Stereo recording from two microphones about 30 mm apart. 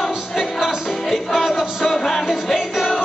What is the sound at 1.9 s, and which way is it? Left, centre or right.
Music, centre.